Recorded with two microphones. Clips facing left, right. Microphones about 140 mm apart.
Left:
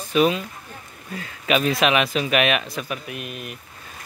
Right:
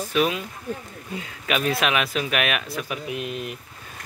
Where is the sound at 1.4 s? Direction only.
Centre (ahead or behind).